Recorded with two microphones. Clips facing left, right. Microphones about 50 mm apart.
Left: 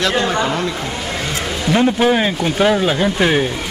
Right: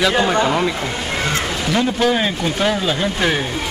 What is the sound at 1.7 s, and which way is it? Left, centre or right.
Speech, left.